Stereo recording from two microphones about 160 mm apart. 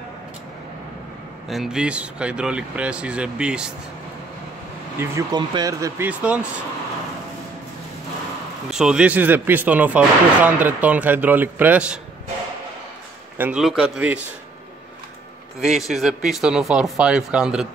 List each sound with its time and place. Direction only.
1.5 s speech: centre (ahead or behind)
4.9 s speech: 15° right (ahead or behind)
6.0 s speech: 10° right (ahead or behind)
8.6 s speech: 5° right (ahead or behind)
13.4 s speech: 5° right (ahead or behind)
15.6 s speech: 5° right (ahead or behind)